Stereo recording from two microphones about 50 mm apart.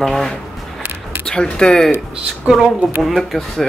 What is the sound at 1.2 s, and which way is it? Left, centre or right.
Speech, centre.